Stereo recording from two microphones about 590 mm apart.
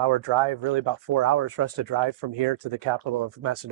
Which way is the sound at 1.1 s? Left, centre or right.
Right.